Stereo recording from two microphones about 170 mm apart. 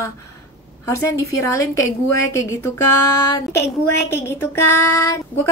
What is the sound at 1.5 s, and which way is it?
A woman's voice, 20° left (ahead or behind).